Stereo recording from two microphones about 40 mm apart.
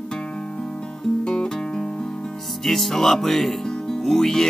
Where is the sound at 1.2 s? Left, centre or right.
Centre.